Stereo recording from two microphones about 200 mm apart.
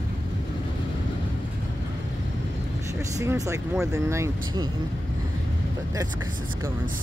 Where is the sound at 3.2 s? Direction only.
15° right (ahead or behind).